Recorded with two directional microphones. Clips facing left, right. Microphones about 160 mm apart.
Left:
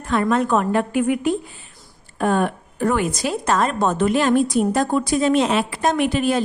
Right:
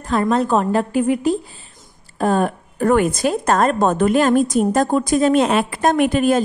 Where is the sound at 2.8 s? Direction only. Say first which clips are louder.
Right 5 dB; 50° right (ahead or behind).